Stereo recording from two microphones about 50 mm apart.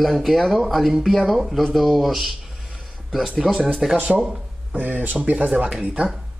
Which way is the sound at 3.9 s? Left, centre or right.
Right.